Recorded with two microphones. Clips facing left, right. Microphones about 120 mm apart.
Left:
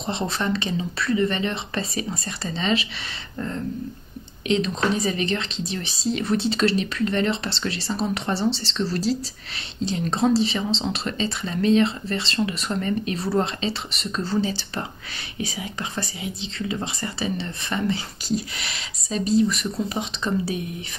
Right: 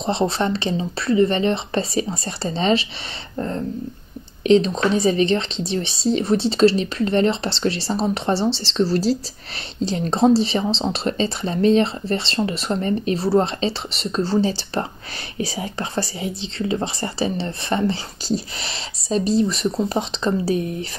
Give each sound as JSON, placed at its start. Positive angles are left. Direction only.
{"t": 0.0, "sound": "speech", "side_deg": -30}
{"t": 4.4, "sound": "speech", "side_deg": -35}